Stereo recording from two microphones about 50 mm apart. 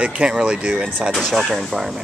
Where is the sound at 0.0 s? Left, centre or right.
Centre.